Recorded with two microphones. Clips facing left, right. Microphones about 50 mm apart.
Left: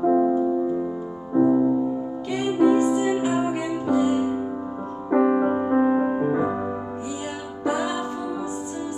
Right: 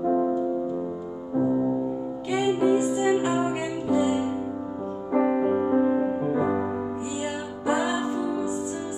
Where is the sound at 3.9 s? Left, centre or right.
Centre.